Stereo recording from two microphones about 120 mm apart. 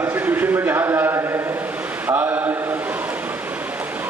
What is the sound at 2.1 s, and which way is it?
Mantra, 15° right (ahead or behind).